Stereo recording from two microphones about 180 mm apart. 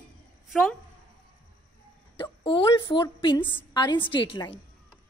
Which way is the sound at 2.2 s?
30° left (ahead or behind).